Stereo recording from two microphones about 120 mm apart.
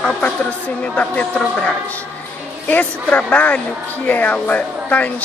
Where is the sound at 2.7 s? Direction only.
15° left (ahead or behind).